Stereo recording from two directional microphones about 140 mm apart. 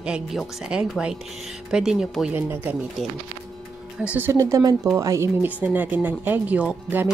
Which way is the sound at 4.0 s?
10° right (ahead or behind).